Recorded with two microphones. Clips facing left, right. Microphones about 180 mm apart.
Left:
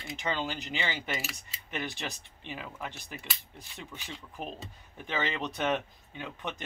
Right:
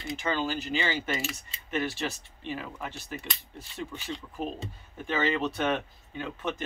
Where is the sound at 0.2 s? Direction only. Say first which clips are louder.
Right 3 dB; 20° left (ahead or behind).